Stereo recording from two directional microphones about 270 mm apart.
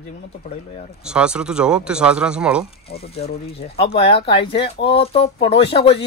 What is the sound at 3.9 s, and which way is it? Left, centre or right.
Speech, centre.